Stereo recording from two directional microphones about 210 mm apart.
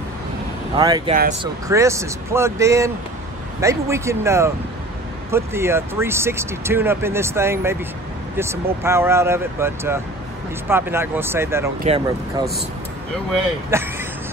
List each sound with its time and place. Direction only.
0.7 s speech: 20° right (ahead or behind)
11.8 s speech: 25° right (ahead or behind)
13.7 s speech: 10° right (ahead or behind)